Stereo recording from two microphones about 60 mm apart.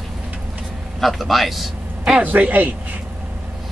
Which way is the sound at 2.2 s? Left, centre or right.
Right.